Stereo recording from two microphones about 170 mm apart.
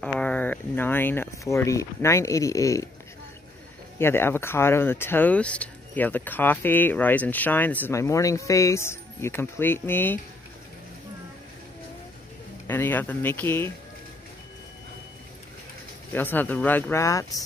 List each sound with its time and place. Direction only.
0.0 s speech: 5° left (ahead or behind)
4.0 s speech: 15° left (ahead or behind)
12.6 s speech: 10° left (ahead or behind)
16.1 s speech: 10° left (ahead or behind)